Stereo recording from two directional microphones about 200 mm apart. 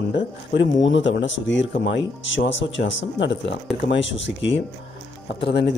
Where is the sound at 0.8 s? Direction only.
65° left (ahead or behind).